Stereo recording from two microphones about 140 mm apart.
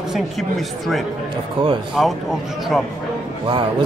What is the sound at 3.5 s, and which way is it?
Speech, 35° right (ahead or behind).